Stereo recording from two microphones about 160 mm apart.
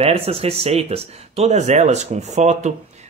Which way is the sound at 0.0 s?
40° right (ahead or behind).